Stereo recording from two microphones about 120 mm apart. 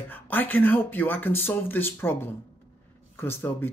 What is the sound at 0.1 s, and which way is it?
Speech, 15° left (ahead or behind).